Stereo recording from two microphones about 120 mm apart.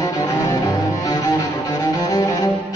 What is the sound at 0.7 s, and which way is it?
Music, 25° left (ahead or behind).